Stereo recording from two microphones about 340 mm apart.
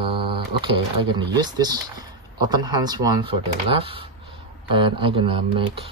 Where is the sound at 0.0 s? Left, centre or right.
Centre.